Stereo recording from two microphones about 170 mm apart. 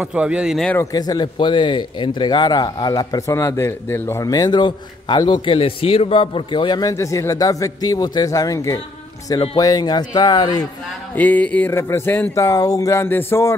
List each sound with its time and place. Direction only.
0.0 s speech: 5° right (ahead or behind)
0.7 s speech: 20° left (ahead or behind)
11.1 s speech: 10° left (ahead or behind)